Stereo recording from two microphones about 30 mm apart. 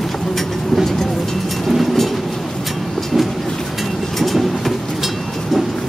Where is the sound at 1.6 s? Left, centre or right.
Centre.